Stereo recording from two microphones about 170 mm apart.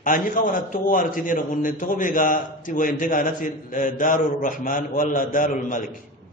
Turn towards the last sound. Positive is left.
turn(degrees=50)  # may be behind; listen again after turning